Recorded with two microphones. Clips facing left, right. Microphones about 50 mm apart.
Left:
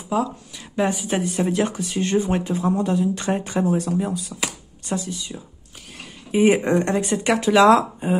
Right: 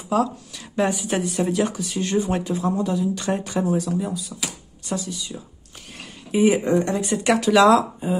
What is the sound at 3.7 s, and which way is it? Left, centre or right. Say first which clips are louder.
Speech: left 1 dB; left.